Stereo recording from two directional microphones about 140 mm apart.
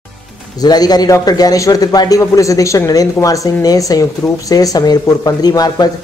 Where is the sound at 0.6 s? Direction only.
30° left (ahead or behind).